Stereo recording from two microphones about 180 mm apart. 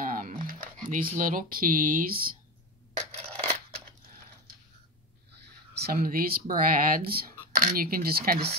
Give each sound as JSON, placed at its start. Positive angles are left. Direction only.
{"t": 0.0, "sound": "speech", "side_deg": -50}
{"t": 5.8, "sound": "speech", "side_deg": -55}